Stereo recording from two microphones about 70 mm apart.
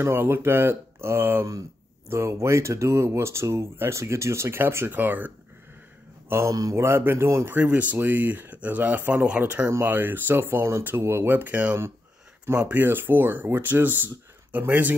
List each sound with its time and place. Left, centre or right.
0.0 s speech: right
6.2 s speech: right
7.5 s speech: right
12.5 s speech: centre
12.8 s speech: right